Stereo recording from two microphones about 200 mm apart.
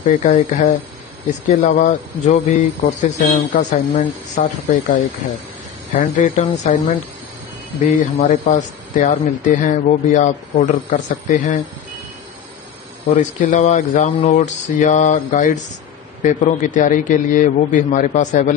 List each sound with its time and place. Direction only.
0.0 s speech: 35° left (ahead or behind)
13.2 s speech: 35° left (ahead or behind)